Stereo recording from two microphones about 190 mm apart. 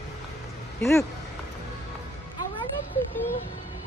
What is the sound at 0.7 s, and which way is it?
Speech, 15° left (ahead or behind).